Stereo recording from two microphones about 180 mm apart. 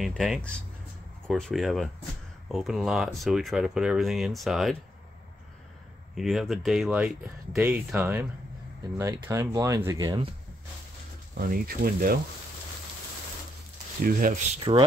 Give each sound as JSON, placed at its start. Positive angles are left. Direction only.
{"t": 0.0, "sound": "speech", "side_deg": 0}
{"t": 6.1, "sound": "speech", "side_deg": 0}
{"t": 11.4, "sound": "speech", "side_deg": -55}
{"t": 14.0, "sound": "speech", "side_deg": -50}
{"t": 14.6, "sound": "speech", "side_deg": -30}